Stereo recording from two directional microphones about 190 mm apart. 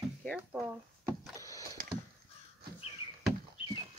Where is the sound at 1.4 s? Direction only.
15° left (ahead or behind).